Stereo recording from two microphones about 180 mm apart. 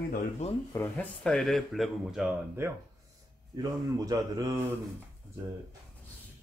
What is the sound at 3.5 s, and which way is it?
Speech, 20° right (ahead or behind).